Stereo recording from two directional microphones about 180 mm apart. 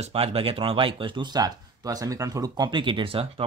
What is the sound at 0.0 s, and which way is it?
Speech, 35° right (ahead or behind).